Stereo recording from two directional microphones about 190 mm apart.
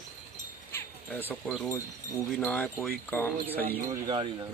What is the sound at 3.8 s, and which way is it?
Speech, 20° right (ahead or behind).